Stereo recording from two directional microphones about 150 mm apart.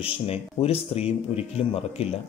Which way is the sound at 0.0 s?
40° left (ahead or behind).